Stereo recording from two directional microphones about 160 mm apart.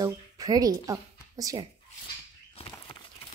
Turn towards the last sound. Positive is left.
turn(degrees=30)  # may be behind; listen again after turning